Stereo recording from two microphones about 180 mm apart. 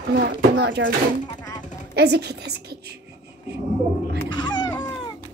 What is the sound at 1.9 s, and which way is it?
Speech, 65° right (ahead or behind).